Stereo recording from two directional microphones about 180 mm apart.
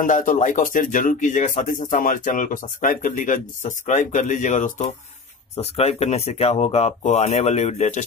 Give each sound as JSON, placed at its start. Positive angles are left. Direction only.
{"t": 0.0, "sound": "speech", "side_deg": 45}